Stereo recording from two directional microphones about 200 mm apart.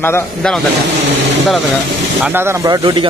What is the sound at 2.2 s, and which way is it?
Speech, 10° right (ahead or behind).